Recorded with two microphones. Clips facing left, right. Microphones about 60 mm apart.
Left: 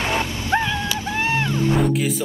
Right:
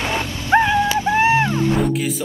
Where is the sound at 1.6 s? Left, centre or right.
Centre.